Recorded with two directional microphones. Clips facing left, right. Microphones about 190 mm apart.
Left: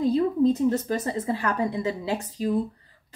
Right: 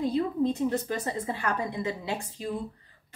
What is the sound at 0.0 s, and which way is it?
A woman's voice, 35° left (ahead or behind).